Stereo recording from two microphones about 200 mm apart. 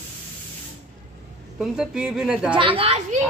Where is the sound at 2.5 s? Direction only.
25° right (ahead or behind).